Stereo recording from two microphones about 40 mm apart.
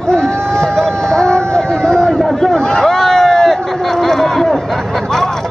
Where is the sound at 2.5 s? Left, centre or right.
Centre.